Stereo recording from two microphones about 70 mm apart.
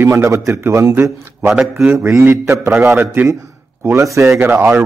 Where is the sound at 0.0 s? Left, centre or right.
Right.